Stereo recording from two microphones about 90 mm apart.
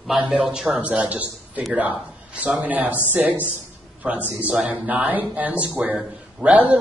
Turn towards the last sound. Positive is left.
turn(degrees=-15)  # may be behind; listen again after turning